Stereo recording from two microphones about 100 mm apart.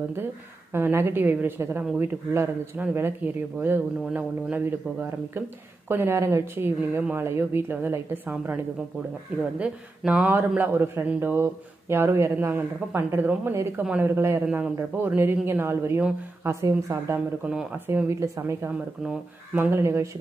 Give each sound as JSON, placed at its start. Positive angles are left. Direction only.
{"t": 0.7, "sound": "speech", "side_deg": -25}
{"t": 5.9, "sound": "speech", "side_deg": -20}
{"t": 9.6, "sound": "speech", "side_deg": -10}
{"t": 19.0, "sound": "speech", "side_deg": -20}